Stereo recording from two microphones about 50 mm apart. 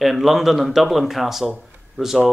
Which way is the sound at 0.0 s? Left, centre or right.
Centre.